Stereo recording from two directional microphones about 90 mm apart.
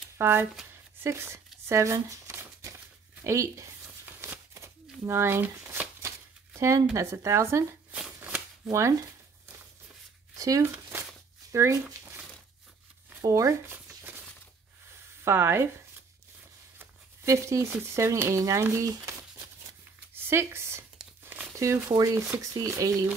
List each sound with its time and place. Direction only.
0.2 s speech: 25° right (ahead or behind)
4.2 s shuffling cards: 30° right (ahead or behind)
6.6 s speech: 35° right (ahead or behind)
8.6 s speech: 35° right (ahead or behind)
10.3 s a sound: 40° right (ahead or behind)
11.5 s speech: 35° right (ahead or behind)
13.2 s speech: 40° right (ahead or behind)
13.8 s a sound: 25° right (ahead or behind)
15.2 s speech: 25° right (ahead or behind)
16.7 s speech: 30° right (ahead or behind)
20.2 s a sound: 25° right (ahead or behind)
21.2 s crumpling: 20° right (ahead or behind)
21.5 s speech: 35° right (ahead or behind)